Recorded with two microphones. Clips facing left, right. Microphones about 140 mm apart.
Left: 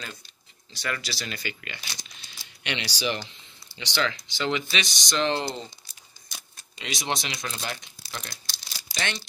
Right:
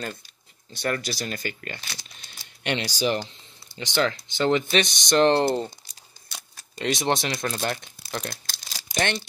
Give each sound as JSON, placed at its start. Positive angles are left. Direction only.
{"t": 0.7, "sound": "speech", "side_deg": -50}
{"t": 6.8, "sound": "speech", "side_deg": -55}